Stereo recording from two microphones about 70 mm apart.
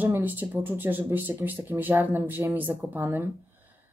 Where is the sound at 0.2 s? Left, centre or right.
Right.